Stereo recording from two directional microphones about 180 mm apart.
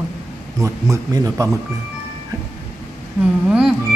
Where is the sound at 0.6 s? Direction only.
20° right (ahead or behind).